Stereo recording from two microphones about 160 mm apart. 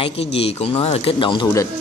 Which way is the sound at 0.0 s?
40° left (ahead or behind).